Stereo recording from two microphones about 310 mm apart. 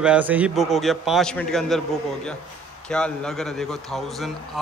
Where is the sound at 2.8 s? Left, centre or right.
Centre.